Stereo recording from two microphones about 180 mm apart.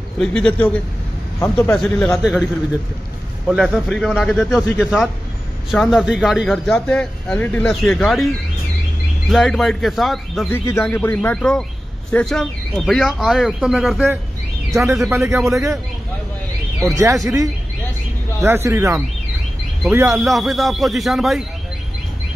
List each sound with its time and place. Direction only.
0.2 s speech: 5° left (ahead or behind)
1.8 s speech: centre (ahead or behind)
3.4 s speech: 5° right (ahead or behind)
9.3 s speech: centre (ahead or behind)
10.5 s speech: 15° left (ahead or behind); by 15.8 s 15° right (ahead or behind)
16.8 s speech: 20° right (ahead or behind)
20.1 s speech: centre (ahead or behind)